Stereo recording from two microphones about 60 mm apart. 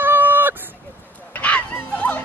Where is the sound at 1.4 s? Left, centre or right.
Left.